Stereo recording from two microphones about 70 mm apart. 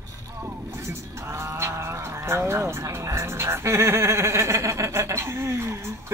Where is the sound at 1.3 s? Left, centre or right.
Right.